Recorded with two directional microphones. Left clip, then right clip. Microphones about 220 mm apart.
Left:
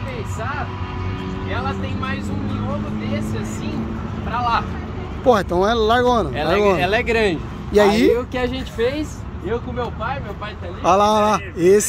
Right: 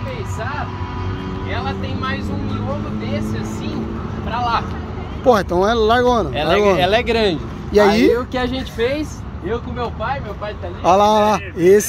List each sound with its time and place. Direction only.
4.3 s speech: 10° right (ahead or behind)
6.8 s speech: 25° right (ahead or behind)
7.7 s speech: centre (ahead or behind)
8.3 s speech: 25° right (ahead or behind)
10.8 s speech: centre (ahead or behind)